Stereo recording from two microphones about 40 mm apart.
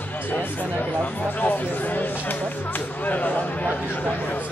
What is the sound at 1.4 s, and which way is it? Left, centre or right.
A man's voice, left.